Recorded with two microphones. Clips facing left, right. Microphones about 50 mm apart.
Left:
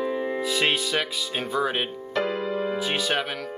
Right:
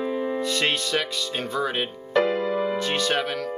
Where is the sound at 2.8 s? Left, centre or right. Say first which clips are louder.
Right 2 dB; centre.